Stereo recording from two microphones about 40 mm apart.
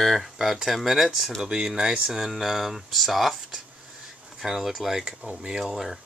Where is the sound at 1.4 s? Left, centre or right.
Centre.